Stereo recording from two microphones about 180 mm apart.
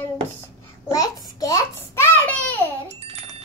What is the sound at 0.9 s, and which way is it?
A child's voice, 20° left (ahead or behind).